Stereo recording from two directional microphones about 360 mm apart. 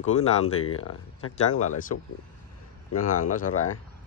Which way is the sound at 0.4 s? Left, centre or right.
Left.